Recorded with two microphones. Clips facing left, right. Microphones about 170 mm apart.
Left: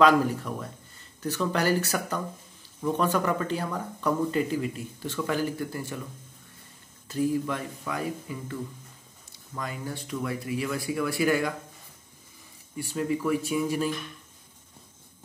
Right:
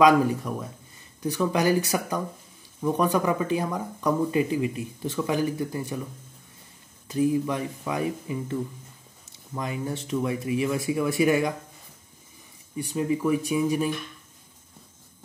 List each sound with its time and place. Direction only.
0.0 s speech: 15° right (ahead or behind)
7.1 s speech: 15° right (ahead or behind)
12.7 s speech: 15° right (ahead or behind)